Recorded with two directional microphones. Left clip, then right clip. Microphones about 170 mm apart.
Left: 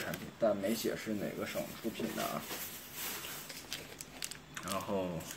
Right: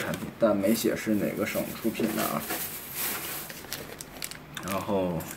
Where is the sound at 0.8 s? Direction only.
35° right (ahead or behind).